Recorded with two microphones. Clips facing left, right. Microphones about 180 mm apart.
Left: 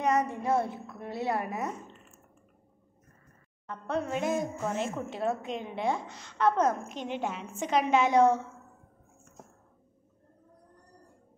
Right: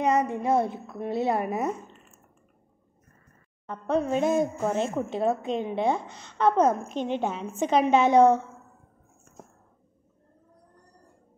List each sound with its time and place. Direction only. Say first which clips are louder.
0.0 s speech: right 4 dB; 20° right (ahead or behind)
3.6 s speech: right 6 dB; 25° right (ahead or behind)